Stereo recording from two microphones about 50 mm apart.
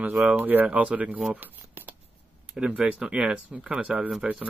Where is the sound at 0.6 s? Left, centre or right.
Right.